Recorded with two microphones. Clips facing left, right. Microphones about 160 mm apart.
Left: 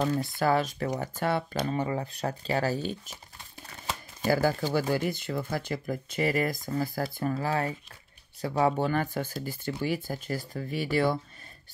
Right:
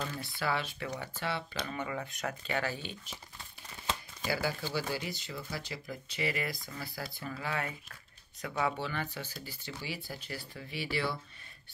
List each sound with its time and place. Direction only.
0.1 s speech: 45° left (ahead or behind)
1.6 s speech: 35° left (ahead or behind)
4.2 s speech: 45° left (ahead or behind)